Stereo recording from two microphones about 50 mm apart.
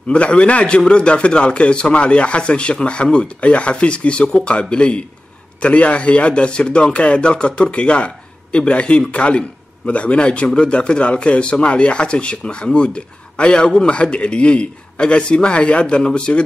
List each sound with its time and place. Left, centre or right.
0.1 s a man's voice: left